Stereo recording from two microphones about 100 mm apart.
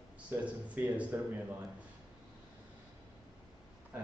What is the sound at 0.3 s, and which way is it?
Speech, 20° right (ahead or behind).